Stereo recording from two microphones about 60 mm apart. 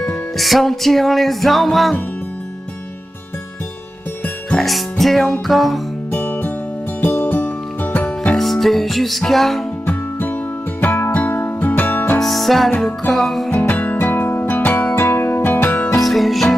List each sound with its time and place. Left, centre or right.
0.0 s music: centre
4.6 s music: centre
6.1 s music: left
8.4 s music: centre
9.8 s music: left
12.2 s music: centre
13.5 s music: left
16.0 s music: centre